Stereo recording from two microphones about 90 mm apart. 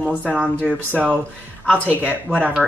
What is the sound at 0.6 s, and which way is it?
Speech, 15° right (ahead or behind).